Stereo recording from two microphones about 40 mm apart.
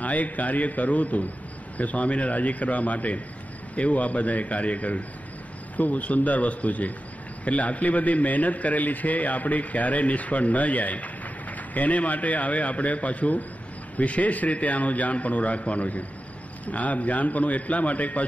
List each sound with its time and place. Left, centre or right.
0.0 s a man's voice: left